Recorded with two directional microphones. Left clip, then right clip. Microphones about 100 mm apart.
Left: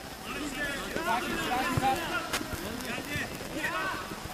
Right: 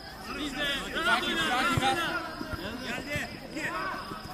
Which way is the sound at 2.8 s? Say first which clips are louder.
Right 1 dB; 5° right (ahead or behind).